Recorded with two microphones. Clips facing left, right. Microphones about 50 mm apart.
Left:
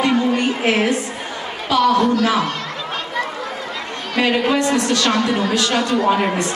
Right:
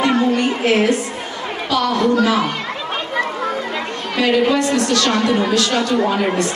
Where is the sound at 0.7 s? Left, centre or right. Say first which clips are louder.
Right 3 dB; left.